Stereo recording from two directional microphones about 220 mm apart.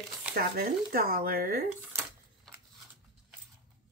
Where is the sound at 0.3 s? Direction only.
40° right (ahead or behind).